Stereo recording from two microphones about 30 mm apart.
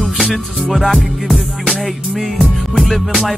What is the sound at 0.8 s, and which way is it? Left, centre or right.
Music, centre.